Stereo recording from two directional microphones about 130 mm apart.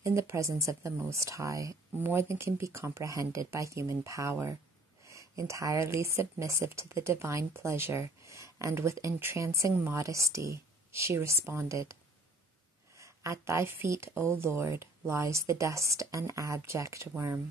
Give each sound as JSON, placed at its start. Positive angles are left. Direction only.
{"t": 0.0, "sound": "a woman's voice", "side_deg": -20}